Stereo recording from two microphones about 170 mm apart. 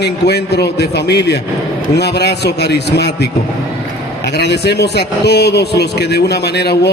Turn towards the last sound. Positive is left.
turn(degrees=75)  # may be behind; listen again after turning